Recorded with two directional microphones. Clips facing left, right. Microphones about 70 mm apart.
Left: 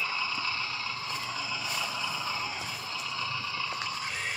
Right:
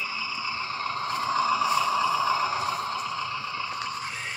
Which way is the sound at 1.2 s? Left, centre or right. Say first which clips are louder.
Right 12 dB; right.